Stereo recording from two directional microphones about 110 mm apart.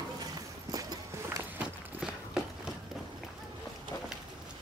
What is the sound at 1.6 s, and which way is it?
Clip-clop, 5° right (ahead or behind).